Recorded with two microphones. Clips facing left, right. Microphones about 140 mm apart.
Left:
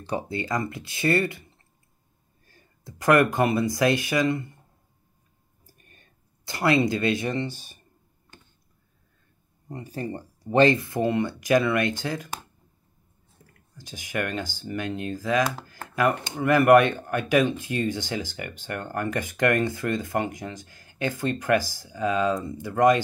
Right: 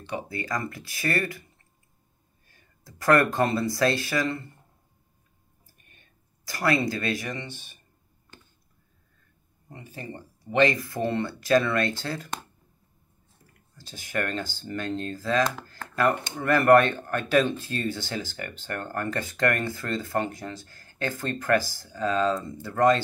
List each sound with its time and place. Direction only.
0.3 s speech: 25° left (ahead or behind)
2.8 s speech: 20° left (ahead or behind)
6.4 s speech: 20° left (ahead or behind); by 7.8 s 35° left (ahead or behind)
9.7 s speech: 40° left (ahead or behind); by 12.4 s 15° left (ahead or behind)
13.7 s speech: 15° left (ahead or behind)